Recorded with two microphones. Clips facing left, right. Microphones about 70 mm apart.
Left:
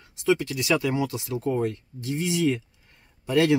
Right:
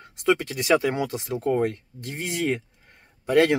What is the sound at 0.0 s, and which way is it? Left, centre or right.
Speech, right.